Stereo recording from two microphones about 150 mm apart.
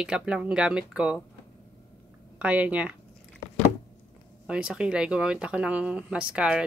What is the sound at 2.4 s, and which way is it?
Speech, 10° right (ahead or behind).